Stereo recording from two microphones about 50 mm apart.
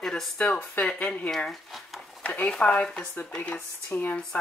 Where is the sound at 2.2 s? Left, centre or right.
Left.